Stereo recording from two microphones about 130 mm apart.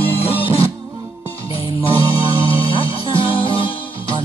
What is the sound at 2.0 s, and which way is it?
Music, 45° left (ahead or behind).